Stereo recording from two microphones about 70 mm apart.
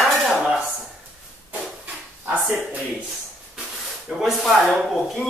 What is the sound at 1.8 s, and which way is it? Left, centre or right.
Dog, centre.